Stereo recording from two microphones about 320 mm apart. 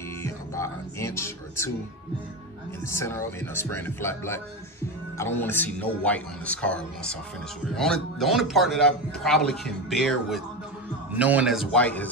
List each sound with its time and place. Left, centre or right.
0.2 s music: centre
2.9 s a man's voice: centre